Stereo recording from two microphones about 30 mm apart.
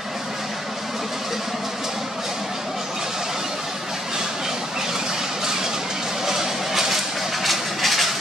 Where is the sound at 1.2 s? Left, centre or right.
Centre.